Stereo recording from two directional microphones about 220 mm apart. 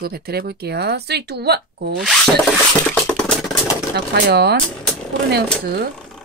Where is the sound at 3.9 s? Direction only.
50° right (ahead or behind).